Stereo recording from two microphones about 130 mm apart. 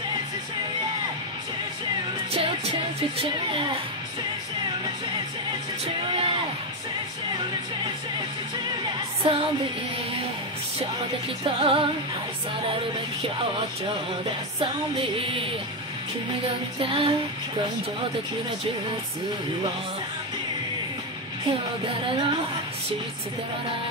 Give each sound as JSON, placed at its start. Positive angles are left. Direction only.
{"t": 2.3, "sound": "music", "side_deg": -45}
{"t": 3.2, "sound": "speech", "side_deg": -40}
{"t": 5.9, "sound": "music", "side_deg": -40}
{"t": 8.8, "sound": "music", "side_deg": -45}
{"t": 11.4, "sound": "music", "side_deg": -45}
{"t": 14.6, "sound": "music", "side_deg": -45}
{"t": 16.8, "sound": "music", "side_deg": -45}
{"t": 22.0, "sound": "speech", "side_deg": -35}